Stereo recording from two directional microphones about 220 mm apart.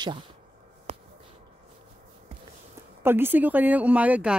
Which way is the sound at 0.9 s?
25° right (ahead or behind).